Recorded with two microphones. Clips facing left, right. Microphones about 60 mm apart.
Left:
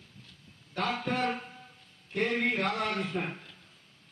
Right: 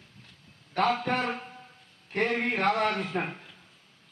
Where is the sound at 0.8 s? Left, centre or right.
Right.